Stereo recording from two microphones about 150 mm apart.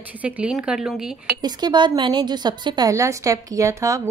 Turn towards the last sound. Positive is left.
turn(degrees=-20)  # may be behind; listen again after turning